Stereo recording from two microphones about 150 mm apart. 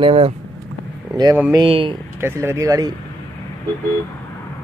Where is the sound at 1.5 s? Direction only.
35° right (ahead or behind).